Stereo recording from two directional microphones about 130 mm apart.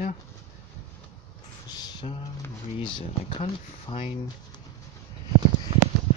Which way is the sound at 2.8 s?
40° left (ahead or behind).